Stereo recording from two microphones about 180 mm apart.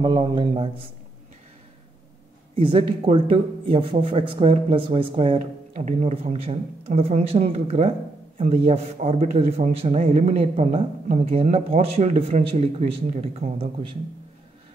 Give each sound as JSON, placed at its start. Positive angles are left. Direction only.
{"t": 0.0, "sound": "a man's voice", "side_deg": -25}
{"t": 2.6, "sound": "speech", "side_deg": -30}